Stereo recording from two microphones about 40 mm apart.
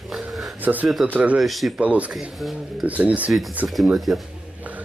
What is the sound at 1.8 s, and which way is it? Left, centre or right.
Speech, right.